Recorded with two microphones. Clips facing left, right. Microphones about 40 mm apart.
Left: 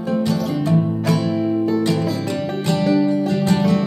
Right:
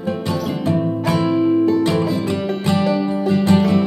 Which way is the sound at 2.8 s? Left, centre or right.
Centre.